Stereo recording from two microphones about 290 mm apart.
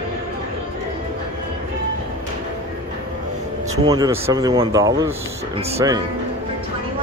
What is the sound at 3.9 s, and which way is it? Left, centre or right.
Speech, centre.